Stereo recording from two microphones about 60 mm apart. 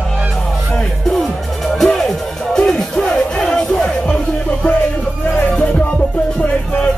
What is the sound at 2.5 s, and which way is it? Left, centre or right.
Music, centre.